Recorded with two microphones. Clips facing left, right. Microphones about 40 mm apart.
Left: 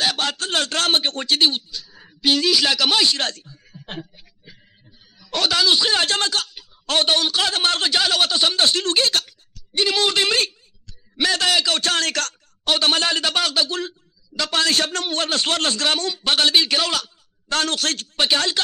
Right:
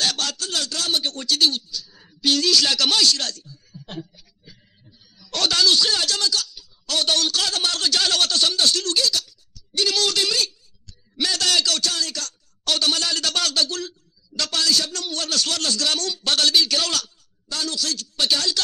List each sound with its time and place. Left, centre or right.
0.0 s a sound: centre
0.3 s a man's voice: left
5.2 s speech: centre; by 7.1 s left
7.1 s a man's voice: left
8.0 s speech: centre; by 9.6 s left
9.7 s a man's voice: left
11.8 s speech: left
12.6 s a man's voice: left
14.5 s a man's voice: left; by 17.1 s centre
17.5 s speech: left